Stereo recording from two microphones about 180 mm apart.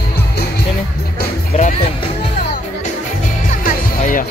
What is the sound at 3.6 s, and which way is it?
Music, 50° left (ahead or behind).